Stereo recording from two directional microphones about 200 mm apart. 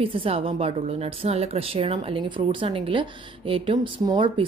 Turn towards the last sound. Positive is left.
turn(degrees=-25)  # may be behind; listen again after turning